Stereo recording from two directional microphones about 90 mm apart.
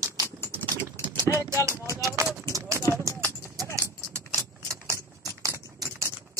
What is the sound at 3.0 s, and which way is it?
Clip-clop, 35° right (ahead or behind).